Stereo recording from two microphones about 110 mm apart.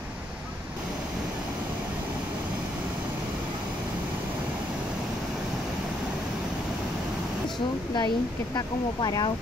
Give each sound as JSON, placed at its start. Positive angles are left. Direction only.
{"t": 8.5, "sound": "speech", "side_deg": 35}